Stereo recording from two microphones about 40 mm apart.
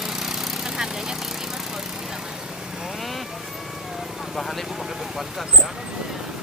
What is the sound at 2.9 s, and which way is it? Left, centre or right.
Vehicle, centre.